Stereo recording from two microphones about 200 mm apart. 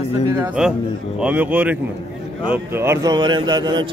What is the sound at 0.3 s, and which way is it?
A man's voice, 5° right (ahead or behind).